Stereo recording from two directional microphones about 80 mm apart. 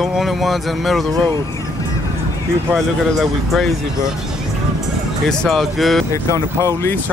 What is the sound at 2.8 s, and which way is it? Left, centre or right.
Speech, centre.